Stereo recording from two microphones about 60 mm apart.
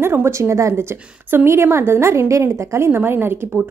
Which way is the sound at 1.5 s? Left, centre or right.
Right.